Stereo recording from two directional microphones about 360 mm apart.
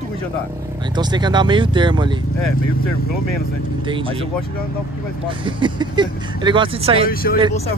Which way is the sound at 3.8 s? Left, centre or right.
Centre.